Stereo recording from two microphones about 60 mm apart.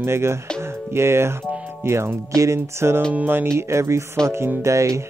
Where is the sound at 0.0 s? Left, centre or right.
Right.